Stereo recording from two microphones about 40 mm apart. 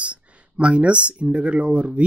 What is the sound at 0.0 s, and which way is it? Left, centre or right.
Speech, right.